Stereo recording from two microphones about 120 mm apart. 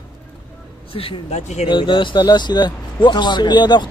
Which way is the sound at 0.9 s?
50° left (ahead or behind).